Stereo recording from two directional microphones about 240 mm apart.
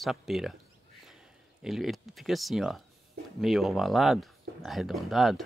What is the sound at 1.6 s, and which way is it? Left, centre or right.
Speech, centre.